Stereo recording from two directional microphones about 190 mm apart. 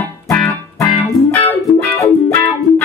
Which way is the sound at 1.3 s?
10° left (ahead or behind).